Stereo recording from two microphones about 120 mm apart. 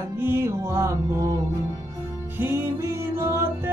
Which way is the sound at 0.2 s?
20° right (ahead or behind).